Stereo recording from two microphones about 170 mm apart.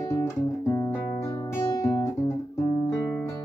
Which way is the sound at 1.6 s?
20° left (ahead or behind).